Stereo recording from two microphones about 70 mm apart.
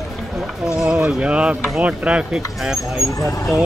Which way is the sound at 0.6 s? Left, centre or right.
Centre.